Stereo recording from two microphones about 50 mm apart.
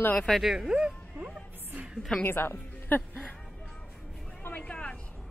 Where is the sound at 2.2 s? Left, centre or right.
Left.